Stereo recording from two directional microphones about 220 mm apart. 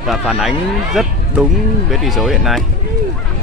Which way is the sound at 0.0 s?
Centre (ahead or behind).